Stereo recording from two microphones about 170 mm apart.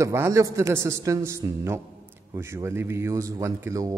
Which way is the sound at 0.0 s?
15° right (ahead or behind).